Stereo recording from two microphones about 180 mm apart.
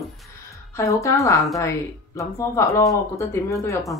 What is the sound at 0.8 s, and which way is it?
Speech, 15° left (ahead or behind).